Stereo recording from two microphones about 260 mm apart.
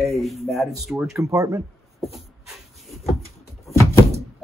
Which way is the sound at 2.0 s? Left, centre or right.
Centre.